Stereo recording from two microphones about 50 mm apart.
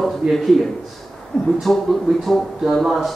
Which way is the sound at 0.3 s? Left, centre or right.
Centre.